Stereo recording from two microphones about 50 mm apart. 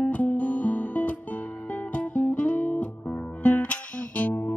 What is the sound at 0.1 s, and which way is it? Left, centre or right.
Music, left.